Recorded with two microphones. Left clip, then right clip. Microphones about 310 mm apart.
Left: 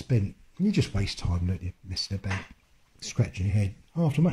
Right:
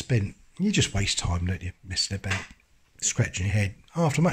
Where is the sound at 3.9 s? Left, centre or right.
Right.